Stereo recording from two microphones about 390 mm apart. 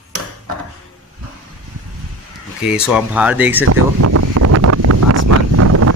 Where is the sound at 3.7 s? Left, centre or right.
Right.